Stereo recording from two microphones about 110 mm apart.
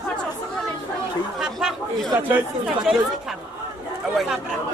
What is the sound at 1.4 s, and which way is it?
Speech, 5° right (ahead or behind).